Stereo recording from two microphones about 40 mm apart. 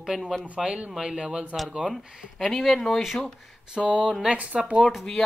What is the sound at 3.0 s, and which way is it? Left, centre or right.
Speech, centre.